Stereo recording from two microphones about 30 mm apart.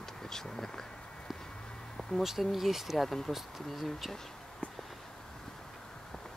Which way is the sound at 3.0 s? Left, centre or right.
Centre.